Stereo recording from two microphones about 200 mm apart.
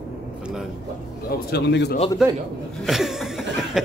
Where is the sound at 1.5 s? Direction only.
55° left (ahead or behind).